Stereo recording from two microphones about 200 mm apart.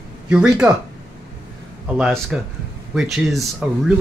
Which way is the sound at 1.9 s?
Centre (ahead or behind).